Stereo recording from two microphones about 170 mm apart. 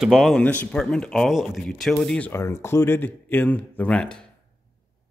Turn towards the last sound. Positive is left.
turn(degrees=5)  # may be behind; listen again after turning